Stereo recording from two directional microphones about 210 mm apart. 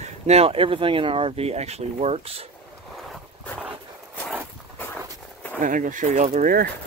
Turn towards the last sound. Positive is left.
turn(degrees=-40)  # may be behind; listen again after turning